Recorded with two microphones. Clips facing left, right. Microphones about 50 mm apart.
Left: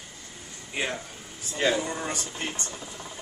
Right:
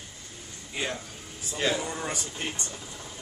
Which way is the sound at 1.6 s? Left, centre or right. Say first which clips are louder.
Left 3 dB; centre.